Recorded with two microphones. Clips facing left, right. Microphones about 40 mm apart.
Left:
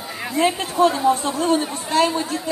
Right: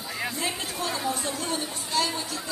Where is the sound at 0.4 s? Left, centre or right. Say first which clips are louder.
Left 13 dB; left.